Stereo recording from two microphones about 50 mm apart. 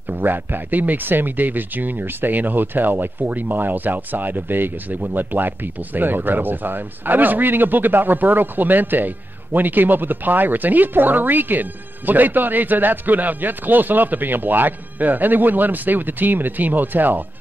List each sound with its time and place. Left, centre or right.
0.2 s speech: right